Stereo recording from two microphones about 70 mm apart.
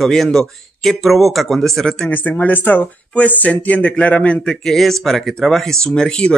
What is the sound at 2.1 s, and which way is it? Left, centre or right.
Speech, left.